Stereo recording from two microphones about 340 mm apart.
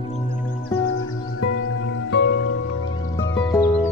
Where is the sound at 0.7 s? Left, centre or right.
Left.